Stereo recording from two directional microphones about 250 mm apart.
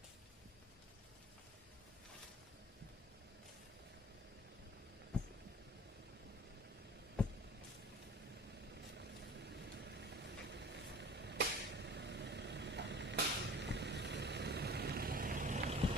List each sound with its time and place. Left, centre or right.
8.9 s vehicle: right